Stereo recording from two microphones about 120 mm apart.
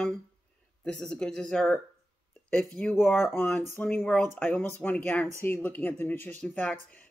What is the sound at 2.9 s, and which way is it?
Speech, 20° left (ahead or behind).